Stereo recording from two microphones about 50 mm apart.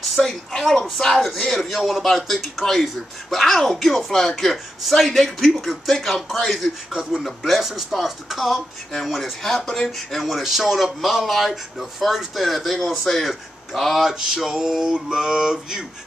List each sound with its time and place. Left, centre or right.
0.2 s a woman's voice: centre
13.3 s male singing: centre